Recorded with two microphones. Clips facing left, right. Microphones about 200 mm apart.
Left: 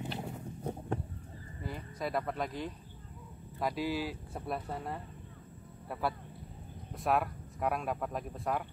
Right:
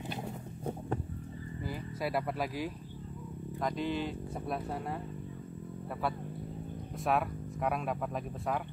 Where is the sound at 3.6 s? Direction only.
5° left (ahead or behind).